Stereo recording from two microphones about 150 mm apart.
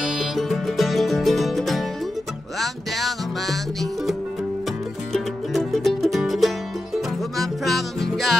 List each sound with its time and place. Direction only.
0.2 s music: centre (ahead or behind)